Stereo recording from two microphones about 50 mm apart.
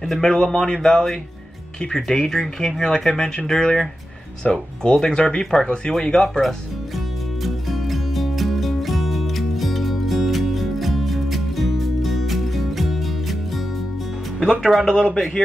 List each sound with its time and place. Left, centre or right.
0.1 s speech: centre
7.4 s music: centre
14.4 s speech: centre